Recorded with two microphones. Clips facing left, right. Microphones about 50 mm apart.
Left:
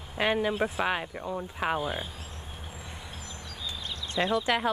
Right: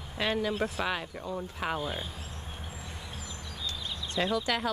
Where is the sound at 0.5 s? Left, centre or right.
Centre.